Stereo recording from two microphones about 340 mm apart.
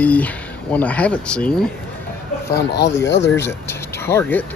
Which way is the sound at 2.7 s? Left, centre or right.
Left.